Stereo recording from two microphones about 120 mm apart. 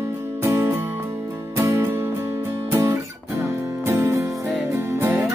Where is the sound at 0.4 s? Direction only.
20° right (ahead or behind).